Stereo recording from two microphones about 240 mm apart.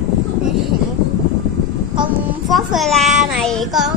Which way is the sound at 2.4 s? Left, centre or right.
Centre.